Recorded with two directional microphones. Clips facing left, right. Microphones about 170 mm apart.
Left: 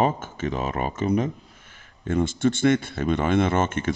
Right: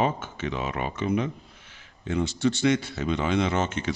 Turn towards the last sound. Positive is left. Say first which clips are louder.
# left 3 dB
turn(degrees=50)  # may be behind; listen again after turning